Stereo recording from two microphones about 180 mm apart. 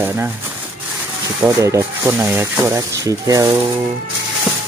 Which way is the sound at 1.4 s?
15° right (ahead or behind).